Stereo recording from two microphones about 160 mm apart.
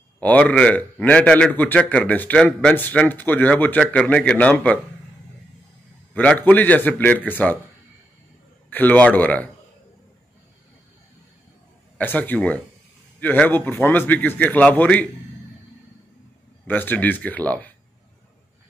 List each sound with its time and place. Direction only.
0.2 s a man's voice: 10° left (ahead or behind)
6.1 s a man's voice: 10° left (ahead or behind)
8.6 s a man's voice: 10° left (ahead or behind)
12.0 s a man's voice: 10° left (ahead or behind)
16.6 s a man's voice: 10° left (ahead or behind)